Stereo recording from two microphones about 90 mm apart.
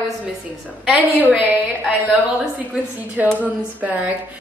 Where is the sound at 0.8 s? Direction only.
15° right (ahead or behind).